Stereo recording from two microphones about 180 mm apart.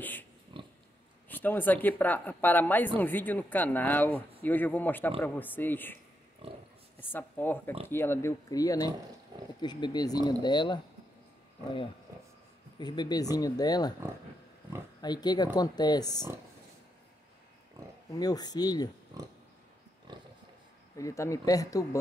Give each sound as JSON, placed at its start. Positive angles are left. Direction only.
{"t": 0.0, "sound": "pig", "side_deg": 10}
{"t": 0.5, "sound": "pig", "side_deg": -25}
{"t": 1.3, "sound": "speech", "side_deg": 10}
{"t": 6.4, "sound": "speech", "side_deg": -30}
{"t": 7.0, "sound": "speech", "side_deg": 10}
{"t": 12.7, "sound": "speech", "side_deg": 25}
{"t": 15.0, "sound": "speech", "side_deg": 25}
{"t": 18.1, "sound": "speech", "side_deg": 20}
{"t": 19.1, "sound": "pig", "side_deg": -20}
{"t": 21.0, "sound": "speech", "side_deg": 15}